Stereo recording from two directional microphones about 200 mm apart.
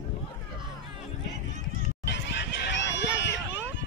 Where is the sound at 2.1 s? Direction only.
60° left (ahead or behind).